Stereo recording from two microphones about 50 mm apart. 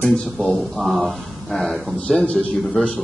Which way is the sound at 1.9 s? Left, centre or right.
Centre.